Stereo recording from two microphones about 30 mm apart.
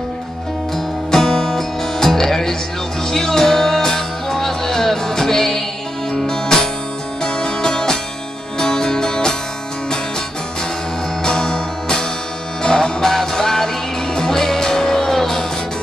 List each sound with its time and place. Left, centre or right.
1.1 s music: centre
11.2 s music: left
13.0 s music: centre